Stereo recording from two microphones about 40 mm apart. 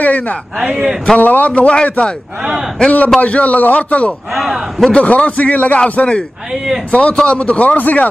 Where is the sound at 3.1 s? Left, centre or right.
Left.